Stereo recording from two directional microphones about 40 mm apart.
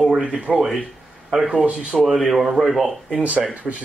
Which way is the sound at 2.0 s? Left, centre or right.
Centre.